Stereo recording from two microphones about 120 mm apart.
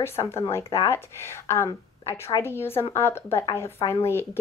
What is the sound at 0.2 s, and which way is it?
Speech, 25° left (ahead or behind).